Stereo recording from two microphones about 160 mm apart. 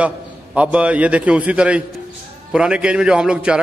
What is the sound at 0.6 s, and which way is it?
A man's voice, 10° right (ahead or behind).